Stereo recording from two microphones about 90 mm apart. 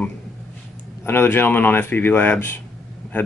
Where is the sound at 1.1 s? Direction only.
25° left (ahead or behind).